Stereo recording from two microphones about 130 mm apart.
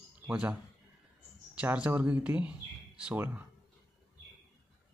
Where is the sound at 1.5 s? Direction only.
10° right (ahead or behind).